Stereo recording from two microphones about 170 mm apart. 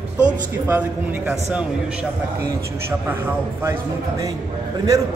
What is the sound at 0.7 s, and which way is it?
Speech, 10° right (ahead or behind).